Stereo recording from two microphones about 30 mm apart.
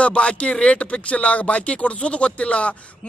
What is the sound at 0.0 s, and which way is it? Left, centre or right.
Speech, left.